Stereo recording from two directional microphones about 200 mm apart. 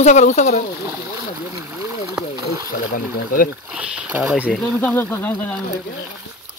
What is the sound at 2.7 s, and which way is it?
Speech, 45° left (ahead or behind).